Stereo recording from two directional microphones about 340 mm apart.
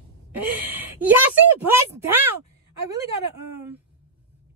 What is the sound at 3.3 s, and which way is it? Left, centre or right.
Speech, right.